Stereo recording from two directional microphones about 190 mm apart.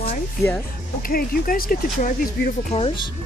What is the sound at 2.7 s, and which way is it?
Speech, 30° left (ahead or behind).